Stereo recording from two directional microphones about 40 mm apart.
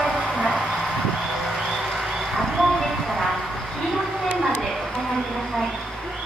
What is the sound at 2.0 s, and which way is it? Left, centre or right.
Vehicle, centre.